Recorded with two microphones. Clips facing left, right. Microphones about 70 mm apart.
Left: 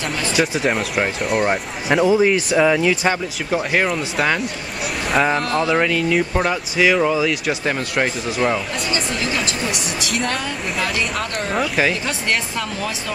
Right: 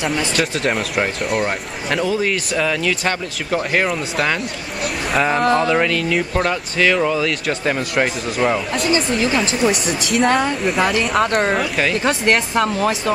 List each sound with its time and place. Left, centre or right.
0.4 s speech: centre
2.0 s speech: centre
8.9 s speech: right
11.5 s speech: centre
12.0 s speech: right